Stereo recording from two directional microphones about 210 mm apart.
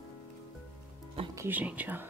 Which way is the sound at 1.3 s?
10° right (ahead or behind).